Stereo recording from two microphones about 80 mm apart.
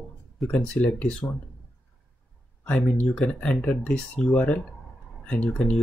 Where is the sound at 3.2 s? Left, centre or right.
Centre.